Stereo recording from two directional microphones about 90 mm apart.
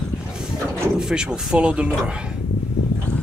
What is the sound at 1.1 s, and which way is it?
Speech, 10° right (ahead or behind).